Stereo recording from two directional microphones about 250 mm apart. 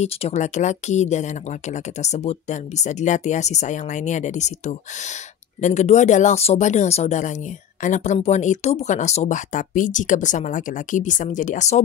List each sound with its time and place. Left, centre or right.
0.0 s speech: left